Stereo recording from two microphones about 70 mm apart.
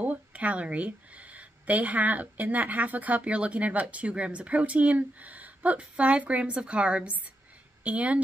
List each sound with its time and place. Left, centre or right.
0.0 s speech: right